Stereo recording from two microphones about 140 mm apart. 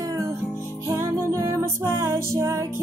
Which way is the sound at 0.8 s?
25° right (ahead or behind).